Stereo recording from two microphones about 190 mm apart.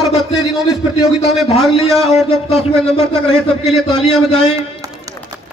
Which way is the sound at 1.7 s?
30° left (ahead or behind).